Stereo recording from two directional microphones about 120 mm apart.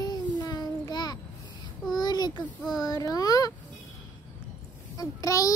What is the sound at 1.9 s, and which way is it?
A child's voice, 35° left (ahead or behind).